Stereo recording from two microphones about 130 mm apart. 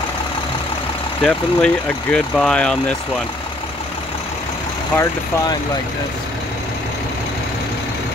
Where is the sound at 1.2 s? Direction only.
10° left (ahead or behind).